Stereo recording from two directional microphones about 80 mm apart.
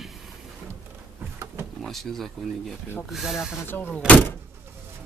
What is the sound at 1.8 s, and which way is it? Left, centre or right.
Speech, centre.